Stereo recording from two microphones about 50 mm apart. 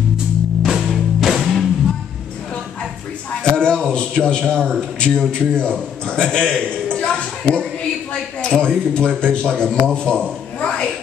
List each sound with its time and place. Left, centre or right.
0.6 s music: centre
3.4 s a man's voice: centre
6.0 s a sound: centre
8.1 s a man's voice: centre